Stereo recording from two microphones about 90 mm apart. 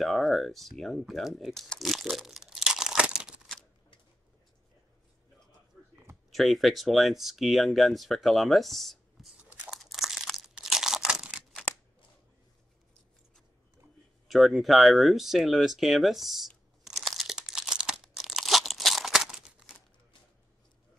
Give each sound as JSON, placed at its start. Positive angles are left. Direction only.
{"t": 0.0, "sound": "speech", "side_deg": 0}
{"t": 6.3, "sound": "speech", "side_deg": 0}
{"t": 9.4, "sound": "crumpling", "side_deg": -10}
{"t": 10.5, "sound": "crunch", "side_deg": -5}
{"t": 14.2, "sound": "a sound", "side_deg": 0}